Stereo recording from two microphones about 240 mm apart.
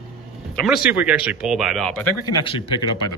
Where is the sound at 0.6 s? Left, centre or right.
Centre.